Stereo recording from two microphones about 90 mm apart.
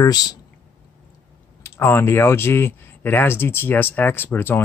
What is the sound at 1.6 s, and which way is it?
Speech, 25° left (ahead or behind).